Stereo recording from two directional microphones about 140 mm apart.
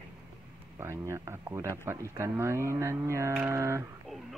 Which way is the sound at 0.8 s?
20° right (ahead or behind).